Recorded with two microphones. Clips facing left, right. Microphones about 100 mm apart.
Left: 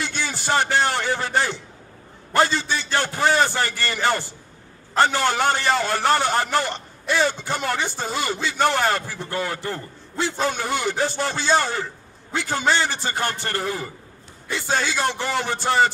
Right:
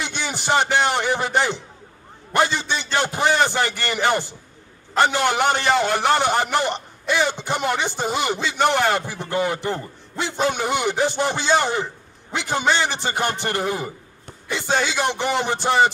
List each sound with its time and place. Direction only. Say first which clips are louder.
0.0 s a man's voice: right 1 dB; 20° right (ahead or behind)